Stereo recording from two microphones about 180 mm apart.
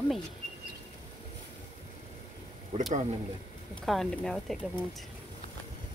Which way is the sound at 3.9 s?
Centre (ahead or behind).